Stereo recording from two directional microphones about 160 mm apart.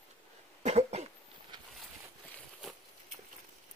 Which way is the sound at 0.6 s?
40° right (ahead or behind).